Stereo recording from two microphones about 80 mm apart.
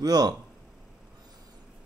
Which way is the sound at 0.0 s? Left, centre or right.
Right.